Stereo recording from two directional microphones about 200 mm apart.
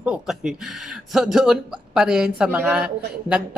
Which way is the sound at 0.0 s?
5° right (ahead or behind).